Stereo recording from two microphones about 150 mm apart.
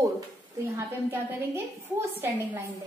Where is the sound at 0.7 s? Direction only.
15° right (ahead or behind).